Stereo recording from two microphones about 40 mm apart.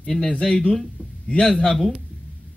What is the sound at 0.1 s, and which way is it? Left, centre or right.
A man's voice, centre.